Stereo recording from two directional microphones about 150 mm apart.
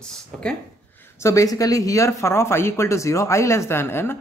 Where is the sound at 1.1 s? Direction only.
20° left (ahead or behind).